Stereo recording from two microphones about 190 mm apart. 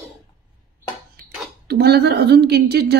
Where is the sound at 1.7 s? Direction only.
60° right (ahead or behind).